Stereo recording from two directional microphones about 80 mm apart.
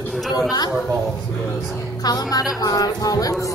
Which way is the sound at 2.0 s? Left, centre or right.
Left.